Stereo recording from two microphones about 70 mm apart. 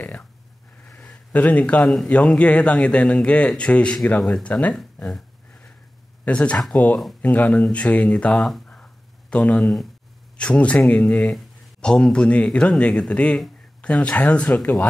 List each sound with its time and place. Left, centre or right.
0.9 s a sound: centre
2.0 s a man's voice: centre
6.2 s a man's voice: centre
8.4 s speech: centre
8.6 s a sound: centre
10.3 s speech: centre
11.1 s a man's voice: centre